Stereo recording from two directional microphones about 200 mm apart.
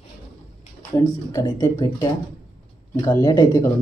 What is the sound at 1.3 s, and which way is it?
Speech, 15° left (ahead or behind).